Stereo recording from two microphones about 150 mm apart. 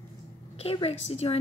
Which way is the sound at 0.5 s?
40° left (ahead or behind).